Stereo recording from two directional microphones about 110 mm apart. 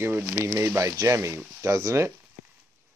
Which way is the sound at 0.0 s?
20° right (ahead or behind).